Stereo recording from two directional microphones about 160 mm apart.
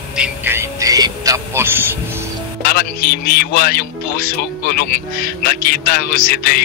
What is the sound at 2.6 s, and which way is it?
Speech, 70° left (ahead or behind).